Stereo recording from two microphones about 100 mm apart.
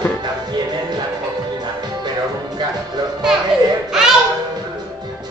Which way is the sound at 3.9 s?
5° right (ahead or behind).